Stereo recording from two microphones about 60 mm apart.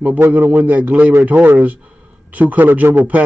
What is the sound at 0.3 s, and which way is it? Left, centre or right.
A man's voice, right.